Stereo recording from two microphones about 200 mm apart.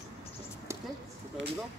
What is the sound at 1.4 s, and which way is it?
Speech, 65° right (ahead or behind).